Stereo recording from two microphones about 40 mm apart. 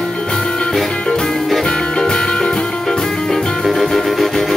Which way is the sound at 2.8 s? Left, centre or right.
Centre.